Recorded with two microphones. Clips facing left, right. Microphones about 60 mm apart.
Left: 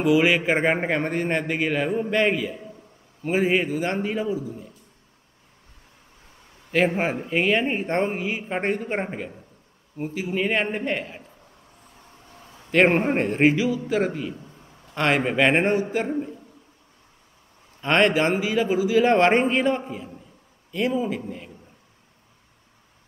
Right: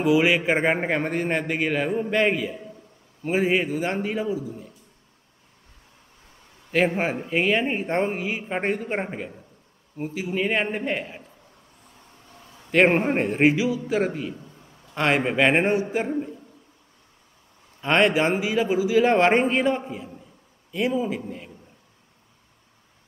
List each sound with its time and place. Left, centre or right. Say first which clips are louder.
0.0 s a man's voice: even; centre
6.7 s a man's voice: left 1 dB; centre
12.7 s a man's voice: even; centre
17.7 s a man's voice: even; centre